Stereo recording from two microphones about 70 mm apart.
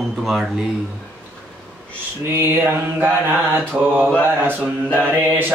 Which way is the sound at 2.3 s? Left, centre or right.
Right.